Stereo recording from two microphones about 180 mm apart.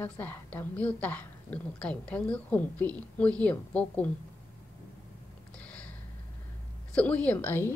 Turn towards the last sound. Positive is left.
turn(degrees=10)  # may be behind; listen again after turning